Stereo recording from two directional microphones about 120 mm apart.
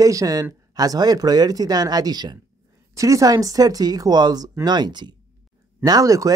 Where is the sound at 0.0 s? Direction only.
30° right (ahead or behind).